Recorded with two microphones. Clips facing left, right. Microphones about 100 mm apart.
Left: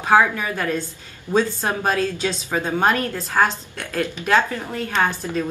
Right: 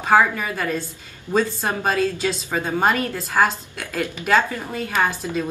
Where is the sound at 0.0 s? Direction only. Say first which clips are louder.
Even; 5° right (ahead or behind).